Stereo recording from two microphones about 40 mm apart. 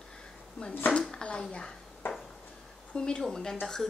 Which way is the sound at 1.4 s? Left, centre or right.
Centre.